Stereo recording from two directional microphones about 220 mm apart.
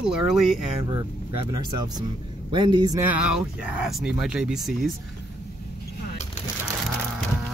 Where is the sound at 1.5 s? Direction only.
15° right (ahead or behind); by 4.9 s centre (ahead or behind).